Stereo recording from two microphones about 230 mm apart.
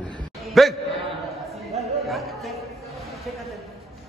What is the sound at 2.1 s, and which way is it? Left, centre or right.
Chatter, centre.